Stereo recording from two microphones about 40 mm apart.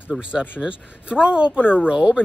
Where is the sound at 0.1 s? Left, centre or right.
Right.